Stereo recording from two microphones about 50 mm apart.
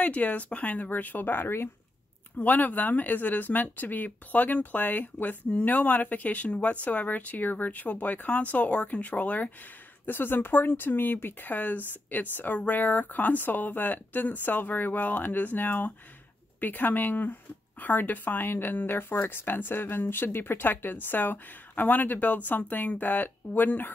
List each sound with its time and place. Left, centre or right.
0.0 s speech: left
2.3 s speech: left
10.0 s speech: left